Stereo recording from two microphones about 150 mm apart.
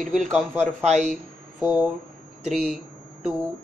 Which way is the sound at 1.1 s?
10° right (ahead or behind).